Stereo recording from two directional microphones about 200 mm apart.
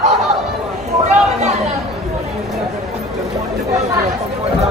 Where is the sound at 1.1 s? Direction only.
35° right (ahead or behind).